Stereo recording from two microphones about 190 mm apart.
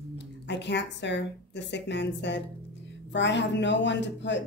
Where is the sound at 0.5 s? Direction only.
65° left (ahead or behind).